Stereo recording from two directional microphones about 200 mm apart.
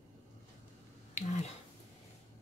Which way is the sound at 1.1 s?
35° left (ahead or behind).